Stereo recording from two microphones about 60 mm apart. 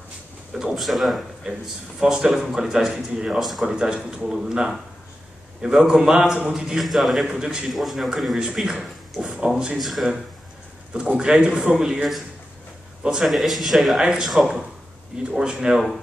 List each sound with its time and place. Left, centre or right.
0.6 s a man's voice: centre
3.3 s speech: centre
3.6 s a man's voice: centre
6.8 s speech: centre
7.2 s a man's voice: centre
7.7 s speech: centre
9.8 s speech: centre
10.9 s a man's voice: centre